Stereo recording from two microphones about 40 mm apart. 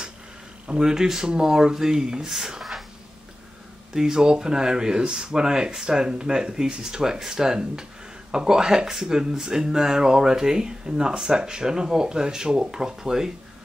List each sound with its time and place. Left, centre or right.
0.7 s speech: centre
3.9 s speech: centre